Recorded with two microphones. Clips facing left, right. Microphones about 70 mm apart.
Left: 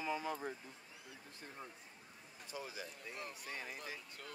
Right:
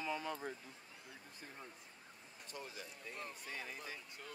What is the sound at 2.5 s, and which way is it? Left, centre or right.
Speech, centre.